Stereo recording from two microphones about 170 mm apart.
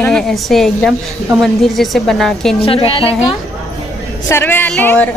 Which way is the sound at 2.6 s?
35° left (ahead or behind).